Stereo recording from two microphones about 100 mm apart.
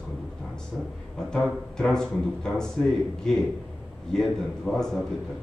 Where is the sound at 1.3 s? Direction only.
5° left (ahead or behind).